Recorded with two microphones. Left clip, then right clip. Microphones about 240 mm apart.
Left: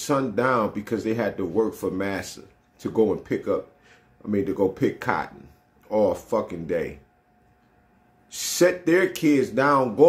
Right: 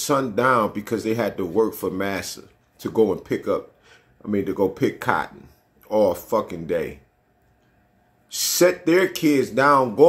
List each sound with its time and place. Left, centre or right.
0.0 s speech: centre
8.3 s speech: centre